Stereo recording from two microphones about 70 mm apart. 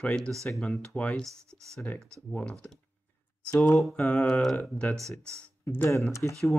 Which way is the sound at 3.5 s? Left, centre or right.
Left.